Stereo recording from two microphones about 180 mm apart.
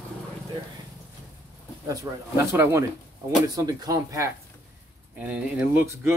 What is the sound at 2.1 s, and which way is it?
Speech, 15° right (ahead or behind).